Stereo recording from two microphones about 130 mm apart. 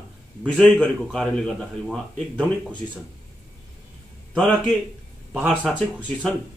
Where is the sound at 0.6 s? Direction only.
Centre (ahead or behind).